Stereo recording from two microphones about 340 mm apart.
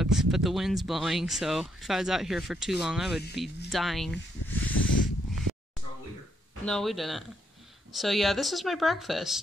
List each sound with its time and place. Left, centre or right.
0.0 s speech: centre
4.7 s a sound: left
6.6 s speech: centre